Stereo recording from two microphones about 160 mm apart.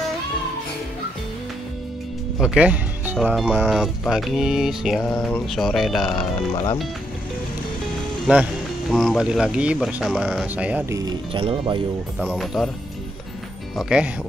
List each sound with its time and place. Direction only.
2.3 s speech: 5° right (ahead or behind)
3.3 s mantra: 10° right (ahead or behind)
6.0 s speech: 30° left (ahead or behind)
8.9 s mantra: centre (ahead or behind)
10.9 s speech: 25° right (ahead or behind)
12.2 s mantra: centre (ahead or behind)
13.7 s mantra: 5° right (ahead or behind)